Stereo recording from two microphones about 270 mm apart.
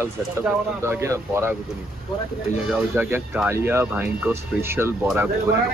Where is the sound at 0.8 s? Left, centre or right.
Centre.